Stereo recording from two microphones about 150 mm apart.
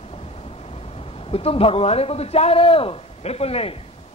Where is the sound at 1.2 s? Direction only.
40° left (ahead or behind).